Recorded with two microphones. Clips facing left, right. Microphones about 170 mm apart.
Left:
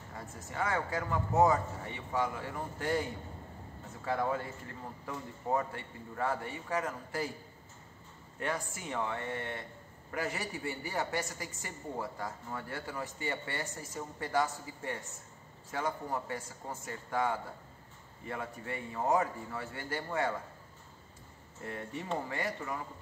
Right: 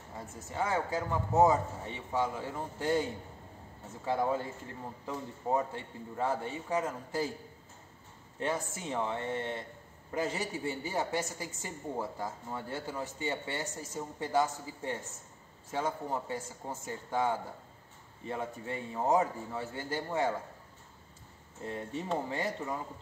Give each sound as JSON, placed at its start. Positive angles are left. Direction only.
{"t": 0.1, "sound": "a woman's voice", "side_deg": -20}
{"t": 8.4, "sound": "a woman's voice", "side_deg": -25}
{"t": 21.6, "sound": "a woman's voice", "side_deg": -20}